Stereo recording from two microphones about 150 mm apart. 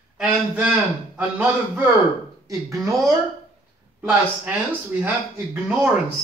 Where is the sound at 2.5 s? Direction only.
20° right (ahead or behind).